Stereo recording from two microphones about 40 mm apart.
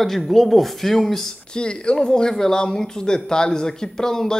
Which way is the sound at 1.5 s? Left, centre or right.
Left.